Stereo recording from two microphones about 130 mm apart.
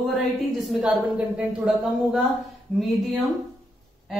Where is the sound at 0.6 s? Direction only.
Centre (ahead or behind).